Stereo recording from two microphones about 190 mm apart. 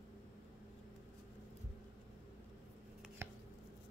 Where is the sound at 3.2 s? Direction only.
15° right (ahead or behind).